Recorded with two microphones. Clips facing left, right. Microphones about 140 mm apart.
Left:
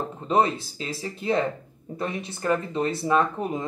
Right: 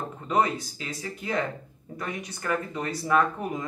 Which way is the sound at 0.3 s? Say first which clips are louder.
Left 3 dB; 25° left (ahead or behind).